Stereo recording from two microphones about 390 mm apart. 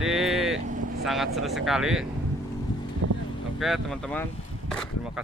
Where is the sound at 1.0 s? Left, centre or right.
Centre.